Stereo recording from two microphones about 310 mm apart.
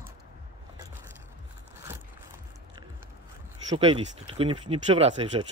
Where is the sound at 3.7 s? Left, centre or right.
Centre.